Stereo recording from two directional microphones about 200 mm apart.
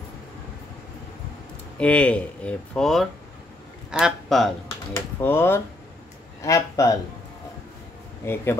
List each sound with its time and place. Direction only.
1.8 s speech: 5° left (ahead or behind)
4.9 s speech: 10° left (ahead or behind)
8.2 s speech: 15° left (ahead or behind)